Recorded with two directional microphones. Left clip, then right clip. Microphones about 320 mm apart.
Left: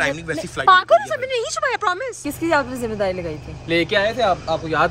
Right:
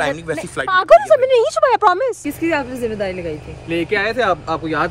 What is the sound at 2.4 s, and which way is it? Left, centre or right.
Speech, centre.